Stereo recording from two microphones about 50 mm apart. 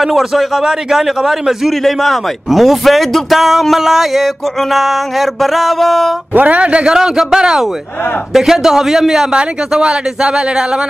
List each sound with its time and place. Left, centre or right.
0.0 s a man's voice: centre
6.3 s speech: right